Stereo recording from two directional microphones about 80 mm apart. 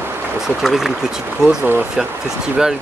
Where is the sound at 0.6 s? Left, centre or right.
Centre.